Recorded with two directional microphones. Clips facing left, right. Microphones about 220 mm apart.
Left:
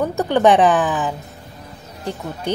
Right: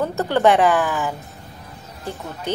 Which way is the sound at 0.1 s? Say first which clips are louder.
Left 3 dB; 15° left (ahead or behind).